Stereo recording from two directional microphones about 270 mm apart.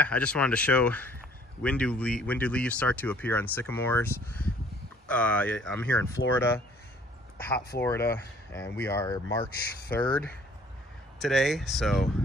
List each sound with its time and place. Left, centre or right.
0.0 s speech: centre
11.1 s speech: centre